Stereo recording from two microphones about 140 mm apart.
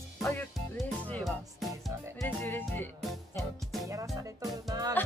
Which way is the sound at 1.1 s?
Centre (ahead or behind).